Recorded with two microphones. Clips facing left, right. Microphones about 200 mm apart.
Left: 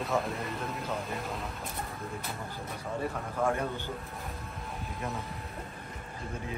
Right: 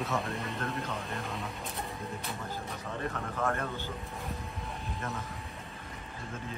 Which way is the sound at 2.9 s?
15° left (ahead or behind).